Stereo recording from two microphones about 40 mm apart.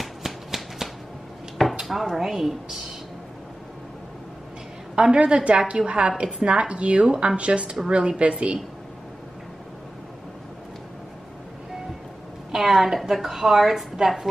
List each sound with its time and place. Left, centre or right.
0.0 s a sound: centre
1.6 s speech: centre
4.9 s a woman's voice: centre
5.2 s a woman's voice: right
12.5 s a woman's voice: centre